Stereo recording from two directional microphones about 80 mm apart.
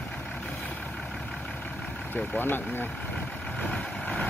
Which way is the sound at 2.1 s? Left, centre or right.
Left.